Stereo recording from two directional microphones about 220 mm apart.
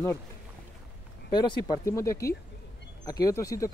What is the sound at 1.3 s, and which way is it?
Speech, 20° left (ahead or behind).